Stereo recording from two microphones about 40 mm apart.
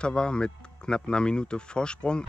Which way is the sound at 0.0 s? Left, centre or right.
Left.